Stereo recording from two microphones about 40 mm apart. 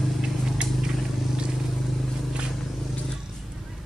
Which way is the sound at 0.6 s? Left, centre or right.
Centre.